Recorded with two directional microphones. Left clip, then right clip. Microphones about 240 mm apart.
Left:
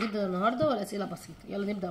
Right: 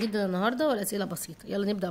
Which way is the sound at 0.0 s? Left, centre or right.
Right.